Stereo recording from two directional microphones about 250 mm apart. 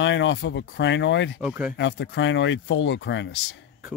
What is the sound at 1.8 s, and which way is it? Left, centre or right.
Speech, left.